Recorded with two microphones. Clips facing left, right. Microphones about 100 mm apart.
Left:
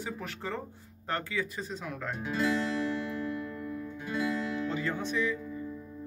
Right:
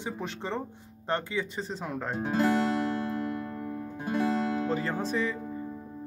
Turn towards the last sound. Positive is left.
turn(degrees=-35)  # may be behind; listen again after turning